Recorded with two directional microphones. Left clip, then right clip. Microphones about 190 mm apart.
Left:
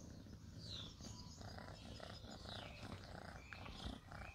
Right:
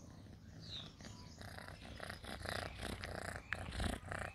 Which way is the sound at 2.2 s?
20° right (ahead or behind).